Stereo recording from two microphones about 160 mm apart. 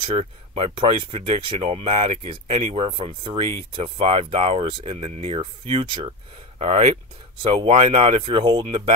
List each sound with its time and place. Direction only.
0.0 s speech: 35° right (ahead or behind)